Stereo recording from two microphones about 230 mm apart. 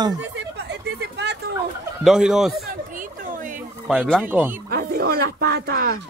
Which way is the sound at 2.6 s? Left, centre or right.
Right.